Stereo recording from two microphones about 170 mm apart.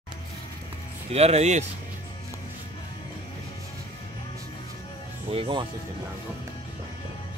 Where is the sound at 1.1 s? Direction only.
40° right (ahead or behind).